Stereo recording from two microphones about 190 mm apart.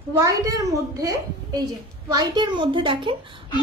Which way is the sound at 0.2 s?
20° right (ahead or behind).